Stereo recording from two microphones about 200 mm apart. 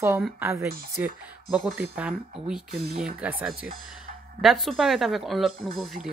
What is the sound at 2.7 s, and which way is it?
Speech, 50° right (ahead or behind).